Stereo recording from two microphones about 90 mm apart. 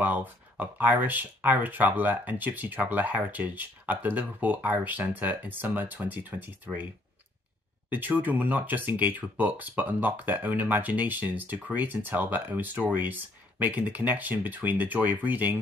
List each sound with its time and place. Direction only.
0.0 s speech: 20° right (ahead or behind)
8.2 s speech: 20° right (ahead or behind)